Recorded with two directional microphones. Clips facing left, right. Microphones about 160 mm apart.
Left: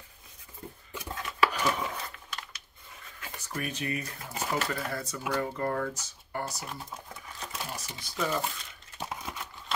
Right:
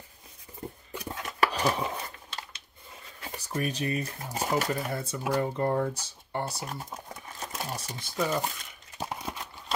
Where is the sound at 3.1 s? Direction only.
35° right (ahead or behind).